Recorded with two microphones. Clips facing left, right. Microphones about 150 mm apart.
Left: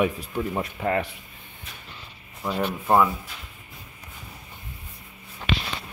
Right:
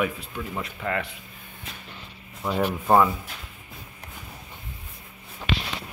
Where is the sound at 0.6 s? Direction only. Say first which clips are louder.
Left 4 dB; 35° left (ahead or behind).